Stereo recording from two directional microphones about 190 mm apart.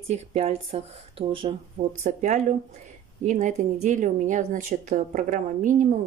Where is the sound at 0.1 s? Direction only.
35° right (ahead or behind).